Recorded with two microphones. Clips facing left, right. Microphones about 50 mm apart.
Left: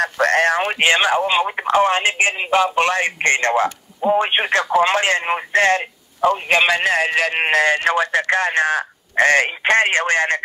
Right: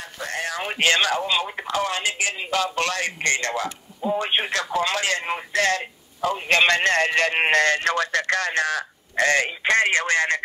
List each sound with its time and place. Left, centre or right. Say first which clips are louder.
0.0 s speech: left 13 dB; left
0.7 s speech: even; left
6.5 s speech: right 2 dB; centre; by 10.4 s left